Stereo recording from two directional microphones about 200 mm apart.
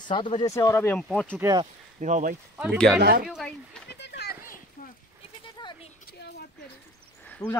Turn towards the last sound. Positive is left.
turn(degrees=10)  # may be behind; listen again after turning